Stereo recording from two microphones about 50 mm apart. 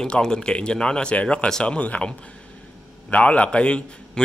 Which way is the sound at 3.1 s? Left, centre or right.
Left.